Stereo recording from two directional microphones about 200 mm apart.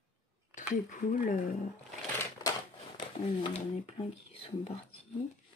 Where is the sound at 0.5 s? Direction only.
40° left (ahead or behind).